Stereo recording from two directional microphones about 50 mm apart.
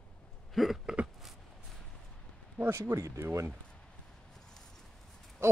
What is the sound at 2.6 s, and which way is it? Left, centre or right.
Speech, right.